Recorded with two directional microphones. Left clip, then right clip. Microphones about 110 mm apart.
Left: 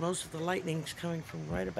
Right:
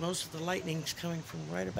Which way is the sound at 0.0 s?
25° left (ahead or behind).